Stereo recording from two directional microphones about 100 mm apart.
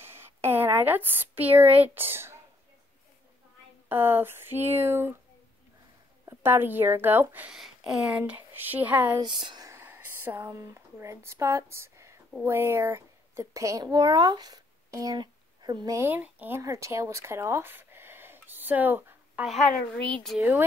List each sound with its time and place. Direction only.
0.0 s speech: 25° right (ahead or behind)
3.9 s speech: 20° right (ahead or behind)
6.2 s speech: 20° right (ahead or behind)
7.5 s speech: 5° right (ahead or behind)
9.2 s speech: 50° right (ahead or behind)
9.7 s a sound: 20° right (ahead or behind)
12.4 s a woman's voice: 25° right (ahead or behind); by 16.0 s 40° right (ahead or behind)
16.0 s speech: 20° right (ahead or behind)
16.6 s speech: 30° right (ahead or behind)
19.4 s a woman's voice: centre (ahead or behind)